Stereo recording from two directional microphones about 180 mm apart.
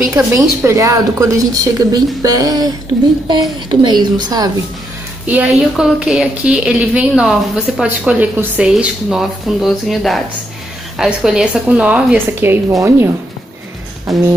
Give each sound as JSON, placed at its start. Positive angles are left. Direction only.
{"t": 0.0, "sound": "a woman's voice", "side_deg": -15}
{"t": 3.8, "sound": "a woman's voice", "side_deg": -25}
{"t": 5.2, "sound": "a woman's voice", "side_deg": -5}
{"t": 14.1, "sound": "a woman's voice", "side_deg": 0}